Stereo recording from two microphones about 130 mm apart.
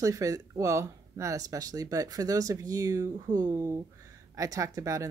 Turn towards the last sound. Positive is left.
turn(degrees=-25)  # may be behind; listen again after turning